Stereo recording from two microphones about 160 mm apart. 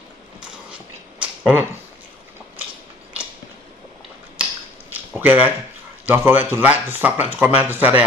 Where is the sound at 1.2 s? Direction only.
10° right (ahead or behind).